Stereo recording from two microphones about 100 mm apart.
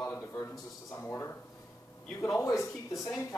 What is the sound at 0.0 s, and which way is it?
A man's voice, 25° left (ahead or behind).